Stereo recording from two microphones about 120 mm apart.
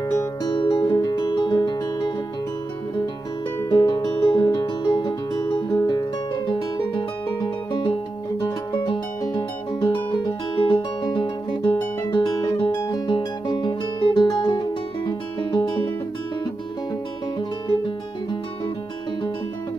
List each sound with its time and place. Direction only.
0.2 s music: 40° left (ahead or behind)
3.7 s music: 35° left (ahead or behind)
7.7 s music: 45° left (ahead or behind)
17.4 s music: 40° left (ahead or behind)